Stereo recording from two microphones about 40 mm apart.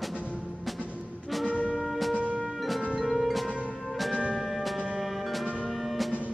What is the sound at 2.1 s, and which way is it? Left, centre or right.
Music, right.